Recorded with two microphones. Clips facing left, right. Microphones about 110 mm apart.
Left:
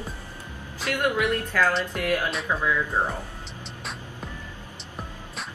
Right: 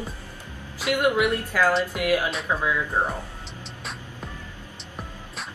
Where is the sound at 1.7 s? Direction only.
Centre (ahead or behind).